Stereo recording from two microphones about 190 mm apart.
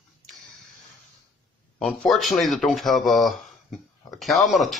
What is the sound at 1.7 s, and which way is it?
Speech, 5° left (ahead or behind).